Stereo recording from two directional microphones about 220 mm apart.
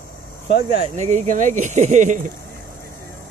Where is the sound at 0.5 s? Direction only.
25° right (ahead or behind).